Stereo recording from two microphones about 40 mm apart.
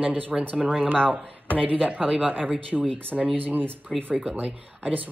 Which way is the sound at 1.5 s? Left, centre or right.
Right.